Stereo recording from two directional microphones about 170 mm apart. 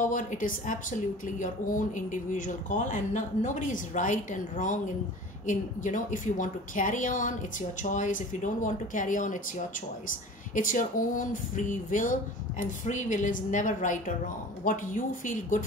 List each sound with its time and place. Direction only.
0.0 s speech: 50° left (ahead or behind)